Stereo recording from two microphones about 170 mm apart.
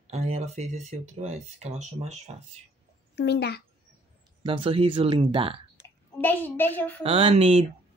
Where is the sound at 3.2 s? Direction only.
80° left.